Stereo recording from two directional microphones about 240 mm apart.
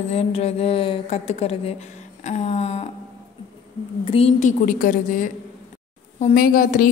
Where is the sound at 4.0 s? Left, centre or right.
Left.